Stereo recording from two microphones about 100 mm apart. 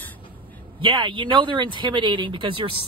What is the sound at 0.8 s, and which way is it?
Speech, 55° right (ahead or behind).